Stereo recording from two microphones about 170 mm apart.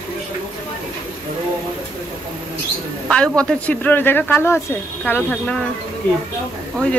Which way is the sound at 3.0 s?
5° left (ahead or behind).